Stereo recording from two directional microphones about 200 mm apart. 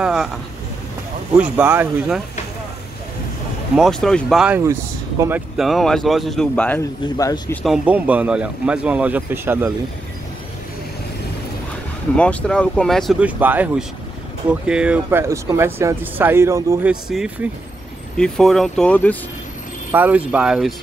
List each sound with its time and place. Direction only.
0.0 s vehicle: 5° right (ahead or behind)
1.3 s a man's voice: 5° right (ahead or behind)
3.7 s a man's voice: centre (ahead or behind)
5.2 s speech: 15° right (ahead or behind)
5.6 s a man's voice: centre (ahead or behind); by 7.5 s 15° left (ahead or behind)
7.6 s speech: 5° right (ahead or behind)
12.2 s a man's voice: 5° left (ahead or behind)
19.9 s a man's voice: 10° right (ahead or behind)